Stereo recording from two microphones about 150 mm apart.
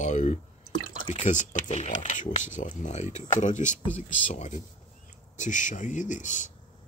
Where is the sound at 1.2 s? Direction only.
55° left (ahead or behind).